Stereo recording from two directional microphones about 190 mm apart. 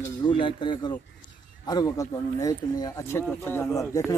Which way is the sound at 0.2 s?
25° left (ahead or behind).